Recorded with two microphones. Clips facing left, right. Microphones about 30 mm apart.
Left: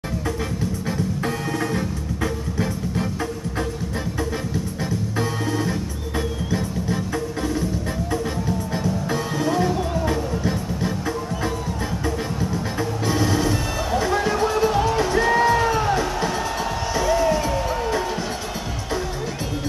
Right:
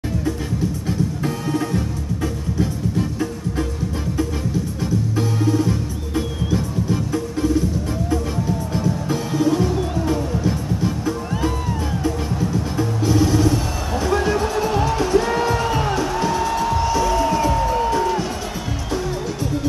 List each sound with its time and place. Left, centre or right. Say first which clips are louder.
1.5 s music: right 2 dB; centre
5.4 s music: right 4 dB; centre
9.3 s music: right 3 dB; centre